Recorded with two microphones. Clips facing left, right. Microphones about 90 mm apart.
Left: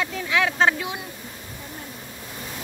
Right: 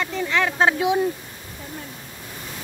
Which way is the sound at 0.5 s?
15° right (ahead or behind).